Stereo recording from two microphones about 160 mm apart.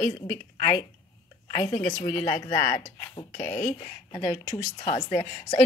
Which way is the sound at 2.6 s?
60° left (ahead or behind).